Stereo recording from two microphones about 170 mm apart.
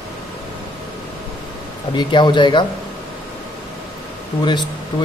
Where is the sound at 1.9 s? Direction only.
25° left (ahead or behind).